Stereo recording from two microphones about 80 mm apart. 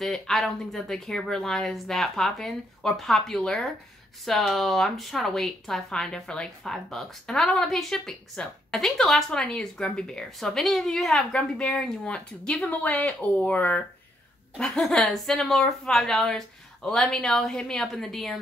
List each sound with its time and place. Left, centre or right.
0.0 s speech: centre
14.6 s speech: centre